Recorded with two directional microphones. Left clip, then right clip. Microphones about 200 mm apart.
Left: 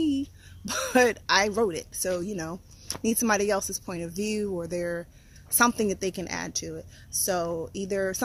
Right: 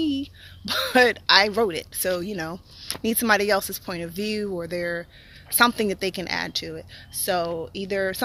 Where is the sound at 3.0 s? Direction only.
Centre (ahead or behind).